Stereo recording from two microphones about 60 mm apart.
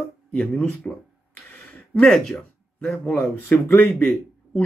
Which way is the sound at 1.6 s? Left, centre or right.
Left.